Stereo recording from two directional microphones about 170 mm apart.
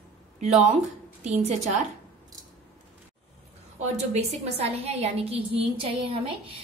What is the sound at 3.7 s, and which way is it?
A woman's voice, 40° right (ahead or behind).